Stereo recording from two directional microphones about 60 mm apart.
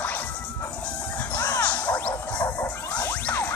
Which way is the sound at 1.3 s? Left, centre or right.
Left.